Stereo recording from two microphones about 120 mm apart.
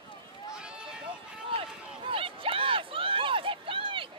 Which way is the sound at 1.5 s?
50° right (ahead or behind).